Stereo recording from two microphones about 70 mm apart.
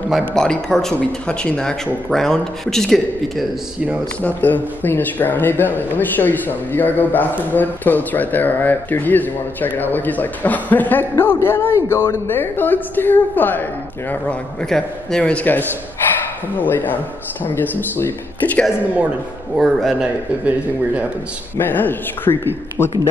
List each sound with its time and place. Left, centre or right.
0.3 s speech: centre
4.2 s speech: left
14.7 s speech: centre; by 18.6 s left
19.6 s a man's voice: centre
20.4 s speech: centre
21.5 s speech: left